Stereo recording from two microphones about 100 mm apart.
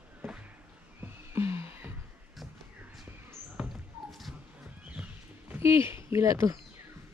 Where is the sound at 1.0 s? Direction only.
25° right (ahead or behind).